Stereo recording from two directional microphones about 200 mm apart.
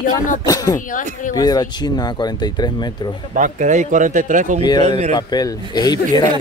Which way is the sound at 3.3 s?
40° right (ahead or behind).